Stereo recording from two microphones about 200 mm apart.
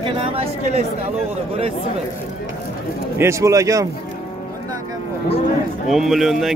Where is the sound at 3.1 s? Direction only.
15° right (ahead or behind).